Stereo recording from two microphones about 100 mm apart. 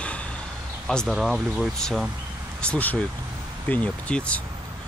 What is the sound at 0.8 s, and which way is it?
Speech, 5° left (ahead or behind).